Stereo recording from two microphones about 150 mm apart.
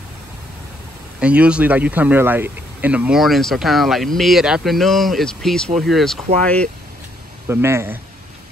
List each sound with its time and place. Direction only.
1.2 s speech: 10° right (ahead or behind); by 6.7 s 10° left (ahead or behind)
7.4 s speech: 15° right (ahead or behind)